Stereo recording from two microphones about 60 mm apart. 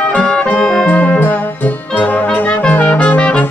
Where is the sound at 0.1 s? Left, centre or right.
Centre.